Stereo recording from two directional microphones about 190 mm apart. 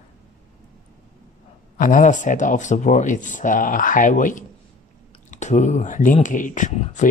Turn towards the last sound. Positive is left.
turn(degrees=40)  # may be behind; listen again after turning